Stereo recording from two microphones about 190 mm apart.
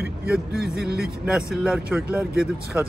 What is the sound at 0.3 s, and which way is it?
Speech, 5° right (ahead or behind).